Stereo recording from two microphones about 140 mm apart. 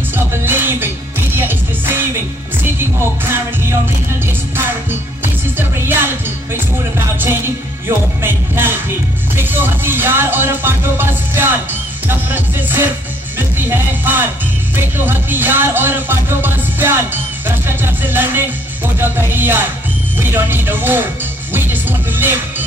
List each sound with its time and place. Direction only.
0.1 s music: 15° right (ahead or behind)
5.6 s music: 15° right (ahead or behind)
8.2 s music: 15° right (ahead or behind)